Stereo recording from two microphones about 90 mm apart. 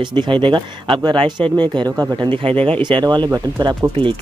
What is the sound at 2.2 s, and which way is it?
Speech, 80° right.